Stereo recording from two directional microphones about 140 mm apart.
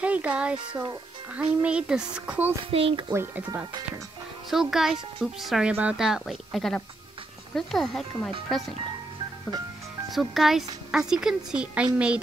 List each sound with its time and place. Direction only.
0.0 s a woman's voice: 10° right (ahead or behind)
2.7 s speech: 45° right (ahead or behind)
3.1 s a woman's voice: 15° right (ahead or behind)
4.5 s a woman's voice: centre (ahead or behind)
10.1 s a woman's voice: centre (ahead or behind)